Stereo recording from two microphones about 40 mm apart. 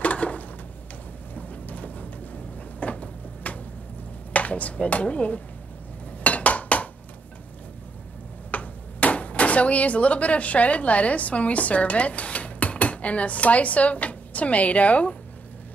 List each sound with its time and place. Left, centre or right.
0.0 s a sound: left
1.3 s rain: left
2.8 s cupboard open or close: left
4.3 s speech: left
6.2 s dishes: left
8.5 s speech: left